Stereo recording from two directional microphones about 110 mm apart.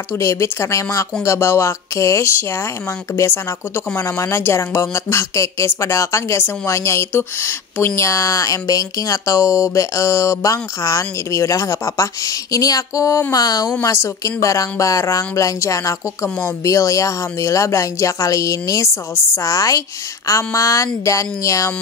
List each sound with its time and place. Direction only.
0.1 s speech: 25° left (ahead or behind)